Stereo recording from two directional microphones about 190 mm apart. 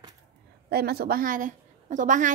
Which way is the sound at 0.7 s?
55° right (ahead or behind).